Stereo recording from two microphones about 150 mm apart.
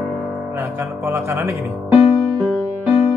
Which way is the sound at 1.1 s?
20° right (ahead or behind).